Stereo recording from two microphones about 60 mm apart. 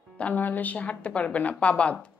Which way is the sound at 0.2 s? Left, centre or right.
Left.